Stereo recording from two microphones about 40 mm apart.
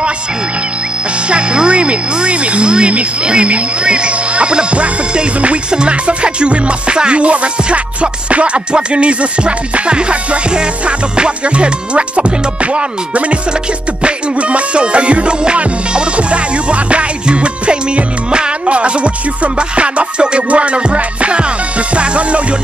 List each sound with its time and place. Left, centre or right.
1.3 s speech: right
14.0 s music: right
21.9 s speech: right